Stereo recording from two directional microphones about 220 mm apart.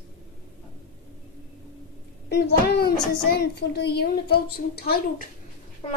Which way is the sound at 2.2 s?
45° left (ahead or behind).